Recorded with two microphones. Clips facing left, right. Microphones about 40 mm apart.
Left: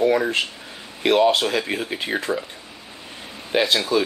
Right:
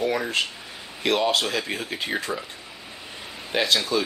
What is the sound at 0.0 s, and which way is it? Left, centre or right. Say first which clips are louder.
Speech: left 5 dB; centre.